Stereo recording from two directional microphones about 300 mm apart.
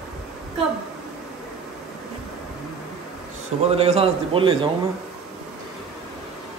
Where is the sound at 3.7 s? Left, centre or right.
Centre.